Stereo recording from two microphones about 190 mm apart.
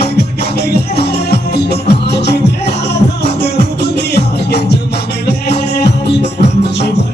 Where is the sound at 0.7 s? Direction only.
60° left (ahead or behind).